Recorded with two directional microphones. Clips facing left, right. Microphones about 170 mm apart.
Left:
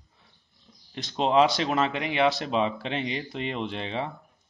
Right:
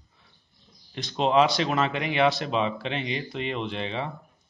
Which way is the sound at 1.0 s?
40° left (ahead or behind).